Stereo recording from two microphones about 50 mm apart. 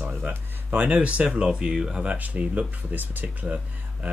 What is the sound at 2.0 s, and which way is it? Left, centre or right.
Speech, right.